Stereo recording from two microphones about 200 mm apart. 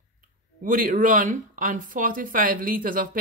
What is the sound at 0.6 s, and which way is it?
Speech, 45° right (ahead or behind).